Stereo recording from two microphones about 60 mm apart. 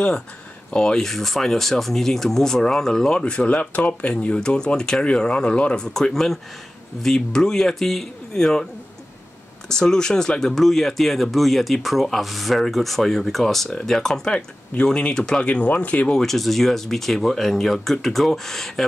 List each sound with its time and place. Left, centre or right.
0.7 s speech: centre
9.7 s speech: centre
15.4 s speech: left
16.2 s speech: centre